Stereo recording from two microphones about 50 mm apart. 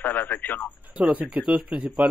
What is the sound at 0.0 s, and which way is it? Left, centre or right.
Speech, left.